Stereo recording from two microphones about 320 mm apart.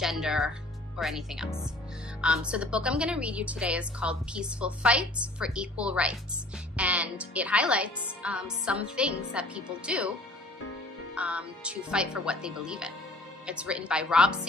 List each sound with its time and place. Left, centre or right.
0.0 s a woman's voice: centre
11.1 s a woman's voice: centre